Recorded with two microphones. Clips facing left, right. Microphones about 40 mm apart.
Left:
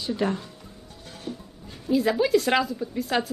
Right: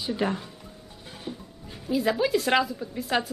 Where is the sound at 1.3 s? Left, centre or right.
Centre.